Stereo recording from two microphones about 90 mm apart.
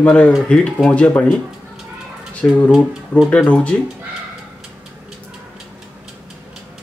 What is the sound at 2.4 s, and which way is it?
Speech, 15° left (ahead or behind).